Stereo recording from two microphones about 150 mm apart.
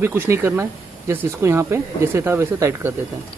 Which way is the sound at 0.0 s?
15° right (ahead or behind).